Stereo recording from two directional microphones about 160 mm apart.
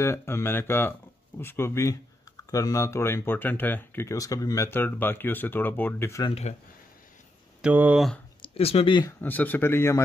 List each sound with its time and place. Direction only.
0.0 s speech: 15° left (ahead or behind)
7.6 s speech: 10° right (ahead or behind)
8.4 s speech: 40° left (ahead or behind)
9.2 s speech: 10° left (ahead or behind)